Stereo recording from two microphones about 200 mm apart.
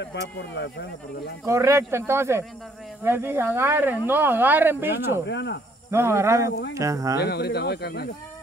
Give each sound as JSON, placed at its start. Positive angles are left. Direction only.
{"t": 0.4, "sound": "speech", "side_deg": 60}
{"t": 1.4, "sound": "speech", "side_deg": -15}
{"t": 5.2, "sound": "speech", "side_deg": 60}
{"t": 5.9, "sound": "speech", "side_deg": -15}
{"t": 7.2, "sound": "speech", "side_deg": 55}